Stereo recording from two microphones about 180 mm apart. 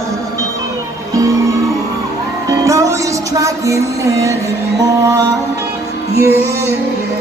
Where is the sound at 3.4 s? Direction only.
15° right (ahead or behind).